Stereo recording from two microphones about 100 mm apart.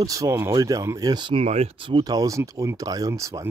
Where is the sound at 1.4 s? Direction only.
90° right; by 2.0 s 60° right (ahead or behind).